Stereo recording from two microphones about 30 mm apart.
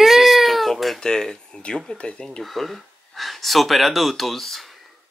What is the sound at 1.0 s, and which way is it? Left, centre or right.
Speech, centre.